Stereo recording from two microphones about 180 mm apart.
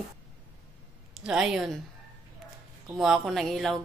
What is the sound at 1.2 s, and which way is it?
Speech, 5° right (ahead or behind).